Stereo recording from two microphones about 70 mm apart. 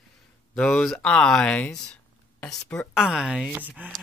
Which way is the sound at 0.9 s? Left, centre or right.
Centre.